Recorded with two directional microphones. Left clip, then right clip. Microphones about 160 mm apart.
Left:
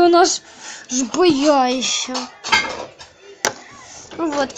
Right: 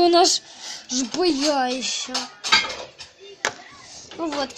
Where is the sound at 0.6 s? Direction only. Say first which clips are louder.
Left 1 dB; 25° left (ahead or behind).